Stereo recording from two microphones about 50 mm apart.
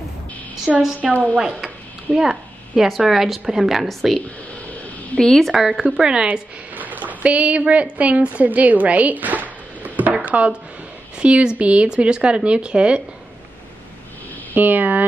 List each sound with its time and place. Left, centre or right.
0.7 s a woman's voice: centre
5.1 s speech: centre
5.5 s a woman's voice: centre
6.7 s a woman's voice: right
14.5 s speech: right